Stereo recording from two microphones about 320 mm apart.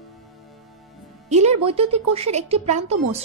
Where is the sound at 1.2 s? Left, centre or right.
Right.